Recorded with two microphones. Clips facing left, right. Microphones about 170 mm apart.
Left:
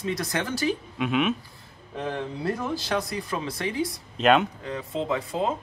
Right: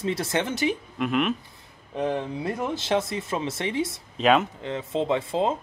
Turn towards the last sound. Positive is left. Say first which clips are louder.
# right 3 dB
turn(degrees=-25)  # may be behind; listen again after turning